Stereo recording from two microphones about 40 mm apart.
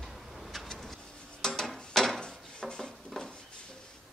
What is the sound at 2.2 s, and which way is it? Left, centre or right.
Dishes, left.